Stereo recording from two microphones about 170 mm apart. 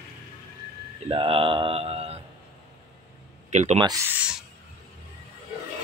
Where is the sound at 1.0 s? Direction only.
30° right (ahead or behind).